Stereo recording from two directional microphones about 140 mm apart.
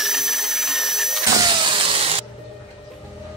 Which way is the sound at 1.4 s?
35° right (ahead or behind).